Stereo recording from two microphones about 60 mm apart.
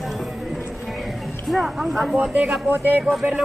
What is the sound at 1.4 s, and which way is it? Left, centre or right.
Speech, centre.